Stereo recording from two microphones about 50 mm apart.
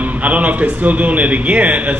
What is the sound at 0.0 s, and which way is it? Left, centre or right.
A man's voice, right.